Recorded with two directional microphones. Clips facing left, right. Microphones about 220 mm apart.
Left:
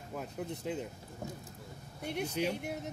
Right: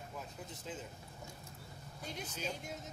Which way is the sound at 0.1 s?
65° left (ahead or behind).